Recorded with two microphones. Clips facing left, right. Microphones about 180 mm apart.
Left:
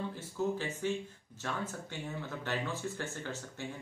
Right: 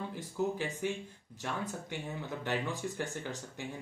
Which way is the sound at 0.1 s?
15° right (ahead or behind).